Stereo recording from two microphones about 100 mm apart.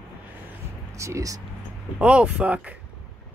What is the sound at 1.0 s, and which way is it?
Speech, 30° right (ahead or behind).